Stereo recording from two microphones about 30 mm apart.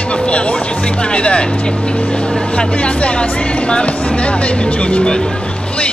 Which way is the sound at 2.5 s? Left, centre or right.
Left.